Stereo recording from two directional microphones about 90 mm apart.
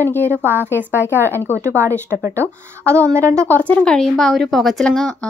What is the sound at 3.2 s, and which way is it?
Speech, 35° right (ahead or behind).